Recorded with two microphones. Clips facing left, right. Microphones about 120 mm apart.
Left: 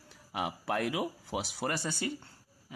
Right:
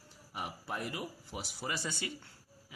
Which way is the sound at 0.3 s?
90° left.